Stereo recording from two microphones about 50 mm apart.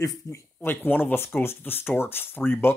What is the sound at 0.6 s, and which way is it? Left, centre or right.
Speech, left.